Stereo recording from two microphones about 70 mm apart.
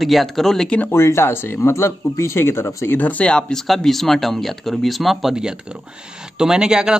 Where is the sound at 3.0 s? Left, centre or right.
Left.